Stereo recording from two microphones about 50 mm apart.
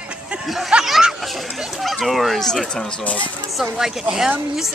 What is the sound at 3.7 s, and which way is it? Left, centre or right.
Speech, centre.